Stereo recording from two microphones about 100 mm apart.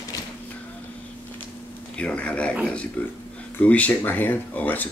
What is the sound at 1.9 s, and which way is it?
Speech, 10° left (ahead or behind).